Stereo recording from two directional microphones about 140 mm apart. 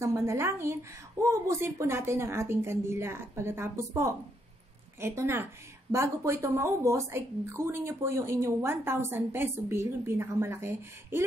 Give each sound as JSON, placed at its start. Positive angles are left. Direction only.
{"t": 0.0, "sound": "a woman's voice", "side_deg": -20}